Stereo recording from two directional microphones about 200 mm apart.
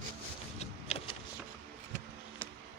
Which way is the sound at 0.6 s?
30° left (ahead or behind).